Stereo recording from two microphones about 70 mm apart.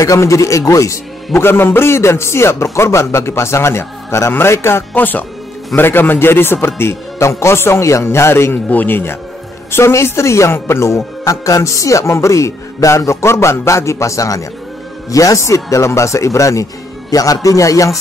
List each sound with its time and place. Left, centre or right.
0.0 s speech: left
1.3 s a man's voice: left
8.6 s speech: left